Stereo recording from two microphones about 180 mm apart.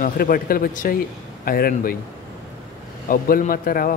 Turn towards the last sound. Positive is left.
turn(degrees=55)  # may be behind; listen again after turning